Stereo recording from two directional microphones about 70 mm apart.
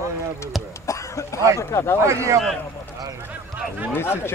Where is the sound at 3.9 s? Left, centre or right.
Left.